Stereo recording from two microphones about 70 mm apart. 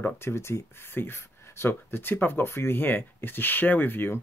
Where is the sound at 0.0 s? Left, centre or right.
Left.